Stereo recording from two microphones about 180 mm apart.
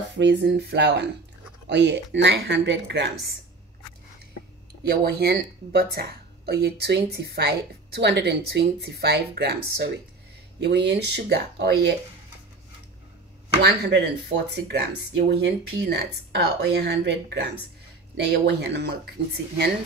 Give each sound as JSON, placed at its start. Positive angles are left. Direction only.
{"t": 0.2, "sound": "speech", "side_deg": -75}
{"t": 4.8, "sound": "speech", "side_deg": -65}
{"t": 10.6, "sound": "speech", "side_deg": -75}
{"t": 13.6, "sound": "speech", "side_deg": -70}